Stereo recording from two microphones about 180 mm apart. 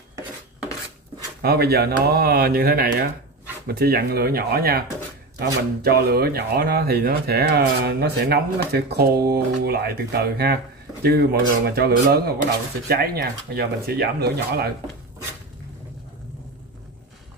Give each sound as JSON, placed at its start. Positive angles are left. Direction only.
{"t": 1.4, "sound": "speech", "side_deg": -60}